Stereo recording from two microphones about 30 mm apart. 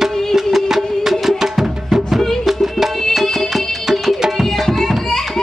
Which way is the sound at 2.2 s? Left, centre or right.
Centre.